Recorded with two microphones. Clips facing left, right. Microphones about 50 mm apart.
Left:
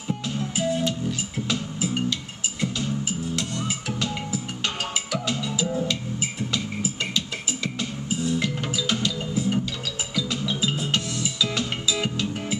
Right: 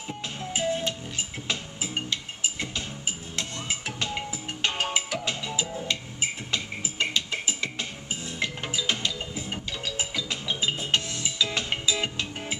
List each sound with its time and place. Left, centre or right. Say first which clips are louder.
0.4 s music: left 2 dB; centre
6.5 s music: left 4 dB; right